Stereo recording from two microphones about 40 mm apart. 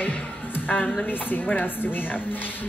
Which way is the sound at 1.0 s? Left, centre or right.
Left.